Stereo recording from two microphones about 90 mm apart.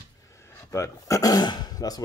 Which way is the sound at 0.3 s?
30° left (ahead or behind).